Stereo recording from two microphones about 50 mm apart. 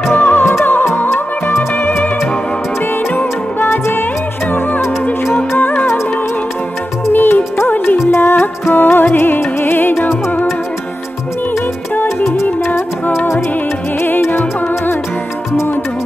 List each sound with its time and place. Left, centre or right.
0.1 s music: left
1.7 s music: left
7.1 s music: left
8.1 s music: left
12.2 s music: left
13.9 s music: left